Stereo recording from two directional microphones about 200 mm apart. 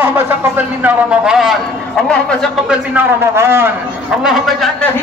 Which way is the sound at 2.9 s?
10° right (ahead or behind).